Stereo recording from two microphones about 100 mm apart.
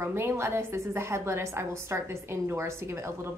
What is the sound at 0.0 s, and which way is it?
A woman's voice, 25° right (ahead or behind).